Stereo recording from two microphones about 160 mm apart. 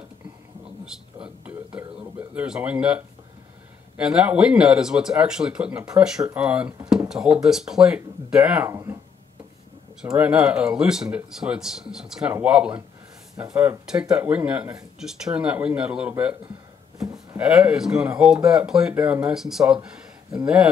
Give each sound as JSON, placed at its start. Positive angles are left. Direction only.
{"t": 0.9, "sound": "a sound", "side_deg": -5}
{"t": 3.9, "sound": "speech", "side_deg": -5}
{"t": 8.6, "sound": "speech", "side_deg": -15}
{"t": 10.1, "sound": "speech", "side_deg": -5}